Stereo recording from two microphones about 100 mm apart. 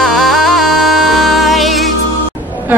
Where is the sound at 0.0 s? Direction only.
Centre (ahead or behind).